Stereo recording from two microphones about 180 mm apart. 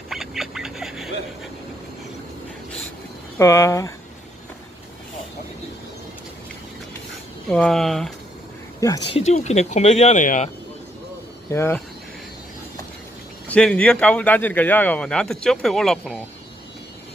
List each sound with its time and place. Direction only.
0.1 s a sound: centre (ahead or behind)
3.3 s speech: 15° left (ahead or behind)
7.4 s speech: 5° left (ahead or behind)
9.1 s speech: 40° left (ahead or behind)
11.5 s speech: 15° left (ahead or behind)
13.5 s speech: 5° left (ahead or behind)